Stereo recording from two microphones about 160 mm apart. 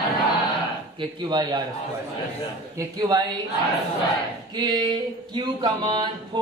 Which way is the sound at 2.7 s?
25° right (ahead or behind).